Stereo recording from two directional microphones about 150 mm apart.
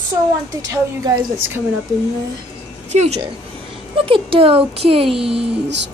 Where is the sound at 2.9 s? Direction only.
50° right (ahead or behind).